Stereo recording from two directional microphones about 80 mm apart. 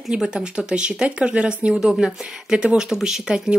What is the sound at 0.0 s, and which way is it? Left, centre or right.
Speech, centre.